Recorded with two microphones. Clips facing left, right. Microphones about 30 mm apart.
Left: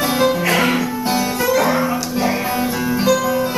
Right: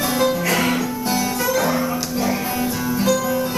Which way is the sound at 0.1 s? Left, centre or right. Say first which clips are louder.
Left 2 dB; centre.